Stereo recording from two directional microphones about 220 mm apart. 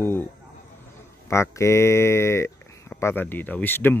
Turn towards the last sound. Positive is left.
turn(degrees=10)  # may be behind; listen again after turning